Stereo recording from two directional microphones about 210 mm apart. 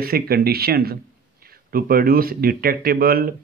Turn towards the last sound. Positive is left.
turn(degrees=-45)  # may be behind; listen again after turning